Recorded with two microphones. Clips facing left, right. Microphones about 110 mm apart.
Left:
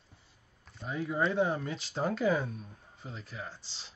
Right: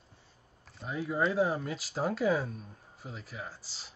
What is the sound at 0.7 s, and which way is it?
Speech, centre (ahead or behind).